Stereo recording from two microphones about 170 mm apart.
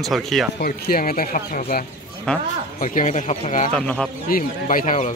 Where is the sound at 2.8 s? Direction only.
50° left (ahead or behind).